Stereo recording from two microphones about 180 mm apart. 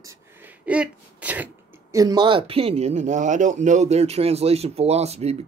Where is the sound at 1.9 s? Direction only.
20° right (ahead or behind).